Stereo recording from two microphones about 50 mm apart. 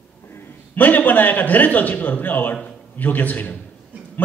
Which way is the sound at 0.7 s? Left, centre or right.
Left.